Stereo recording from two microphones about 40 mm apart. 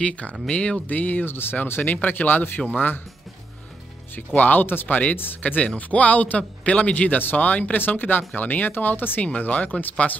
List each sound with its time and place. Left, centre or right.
0.0 s speech: left
0.8 s speech: left
1.2 s speech: left
4.1 s speech: left
9.4 s speech: left